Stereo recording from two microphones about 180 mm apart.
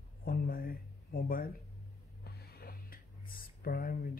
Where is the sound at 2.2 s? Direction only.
60° left (ahead or behind).